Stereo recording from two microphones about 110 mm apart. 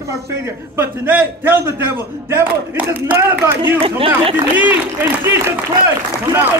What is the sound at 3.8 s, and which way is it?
Speech, 55° right (ahead or behind).